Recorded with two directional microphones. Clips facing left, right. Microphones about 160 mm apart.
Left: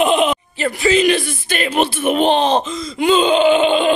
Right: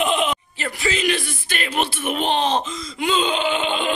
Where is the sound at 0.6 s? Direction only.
25° left (ahead or behind).